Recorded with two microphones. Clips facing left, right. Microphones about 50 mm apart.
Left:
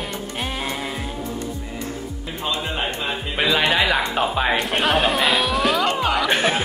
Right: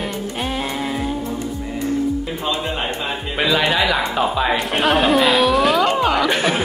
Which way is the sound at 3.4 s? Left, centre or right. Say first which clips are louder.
Right 1 dB; centre.